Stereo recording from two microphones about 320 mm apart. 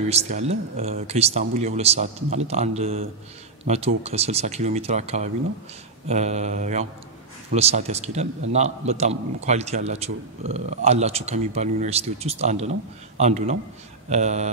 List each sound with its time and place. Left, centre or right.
0.1 s a man's voice: centre